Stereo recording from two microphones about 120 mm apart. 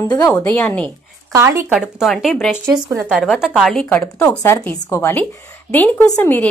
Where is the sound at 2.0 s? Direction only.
Centre (ahead or behind).